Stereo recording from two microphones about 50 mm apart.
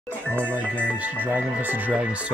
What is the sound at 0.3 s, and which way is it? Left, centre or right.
Speech, right.